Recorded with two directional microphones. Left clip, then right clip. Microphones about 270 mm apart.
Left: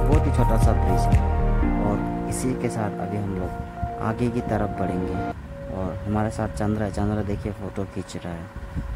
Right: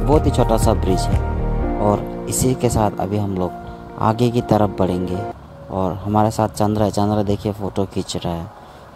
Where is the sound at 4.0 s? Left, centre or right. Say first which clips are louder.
Right 10 dB; centre.